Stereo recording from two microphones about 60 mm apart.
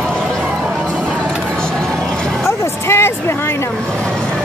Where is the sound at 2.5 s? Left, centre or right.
Left.